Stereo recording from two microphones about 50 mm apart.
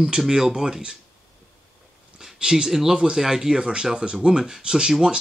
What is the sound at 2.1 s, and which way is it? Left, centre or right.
Speech, centre.